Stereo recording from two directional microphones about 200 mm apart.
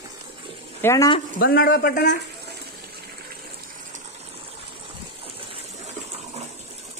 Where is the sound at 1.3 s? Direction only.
45° left (ahead or behind).